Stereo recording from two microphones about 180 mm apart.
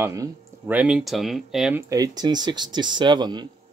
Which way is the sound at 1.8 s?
20° right (ahead or behind).